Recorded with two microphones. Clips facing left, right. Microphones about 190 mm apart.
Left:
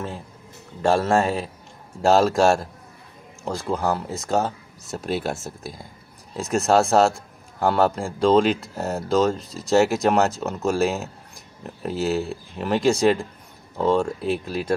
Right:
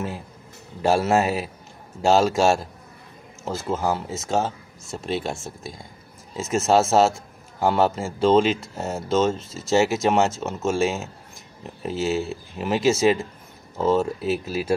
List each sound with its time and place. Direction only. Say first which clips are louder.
0.8 s a man's voice: even; 5° right (ahead or behind)